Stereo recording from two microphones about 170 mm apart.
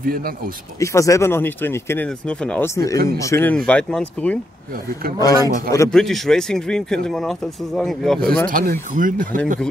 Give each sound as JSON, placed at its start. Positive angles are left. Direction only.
{"t": 0.0, "sound": "speech", "side_deg": -60}
{"t": 0.7, "sound": "speech", "side_deg": 20}
{"t": 2.7, "sound": "a man's voice", "side_deg": 20}
{"t": 5.2, "sound": "a man's voice", "side_deg": 20}
{"t": 5.9, "sound": "speech", "side_deg": 0}
{"t": 8.5, "sound": "speech", "side_deg": -55}